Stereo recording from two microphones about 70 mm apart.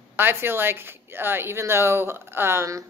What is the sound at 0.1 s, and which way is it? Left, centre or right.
A woman's voice, right.